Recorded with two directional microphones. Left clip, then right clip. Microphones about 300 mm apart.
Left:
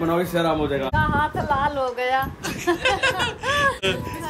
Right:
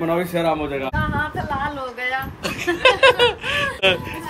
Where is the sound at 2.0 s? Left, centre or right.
Left.